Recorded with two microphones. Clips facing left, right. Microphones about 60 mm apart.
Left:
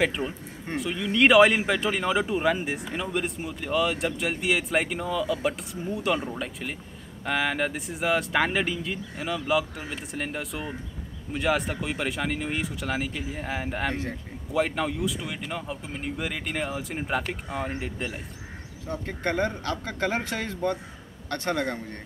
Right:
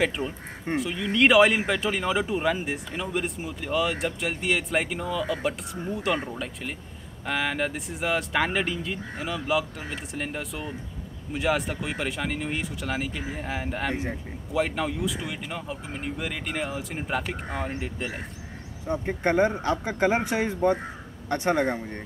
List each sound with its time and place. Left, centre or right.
0.0 s speech: centre
18.9 s speech: right